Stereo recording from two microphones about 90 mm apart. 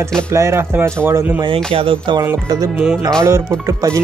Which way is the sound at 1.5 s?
90° right.